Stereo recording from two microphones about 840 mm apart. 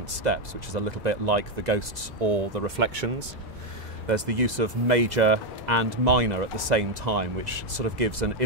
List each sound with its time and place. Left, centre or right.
0.2 s speech: right